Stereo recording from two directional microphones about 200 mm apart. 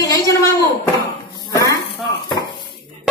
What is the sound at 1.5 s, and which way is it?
Dishes, 15° left (ahead or behind).